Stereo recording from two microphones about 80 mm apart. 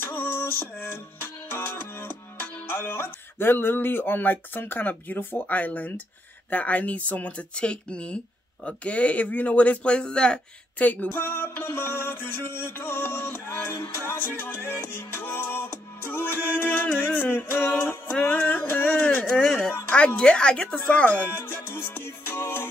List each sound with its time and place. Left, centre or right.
0.0 s music: left
6.5 s speech: centre
19.3 s speech: centre; by 22.7 s left